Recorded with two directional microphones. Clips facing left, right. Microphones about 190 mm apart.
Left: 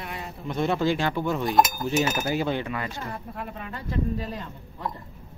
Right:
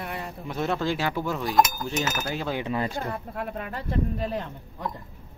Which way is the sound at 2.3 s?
5° left (ahead or behind).